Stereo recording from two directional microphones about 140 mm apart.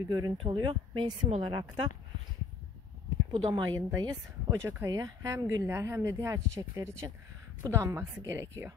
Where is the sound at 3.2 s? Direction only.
30° right (ahead or behind).